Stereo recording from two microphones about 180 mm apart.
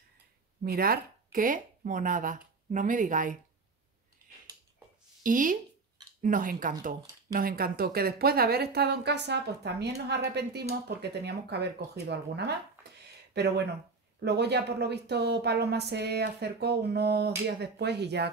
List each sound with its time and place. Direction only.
0.7 s speech: 55° right (ahead or behind)
5.2 s a woman's voice: 50° right (ahead or behind); by 18.3 s 70° right (ahead or behind)